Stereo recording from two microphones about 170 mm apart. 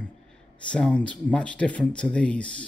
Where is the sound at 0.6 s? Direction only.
5° left (ahead or behind).